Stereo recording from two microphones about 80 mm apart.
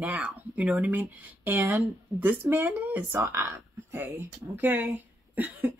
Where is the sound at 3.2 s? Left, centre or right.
Right.